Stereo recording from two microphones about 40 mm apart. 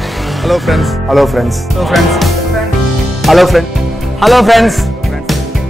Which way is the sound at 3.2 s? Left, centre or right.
Centre.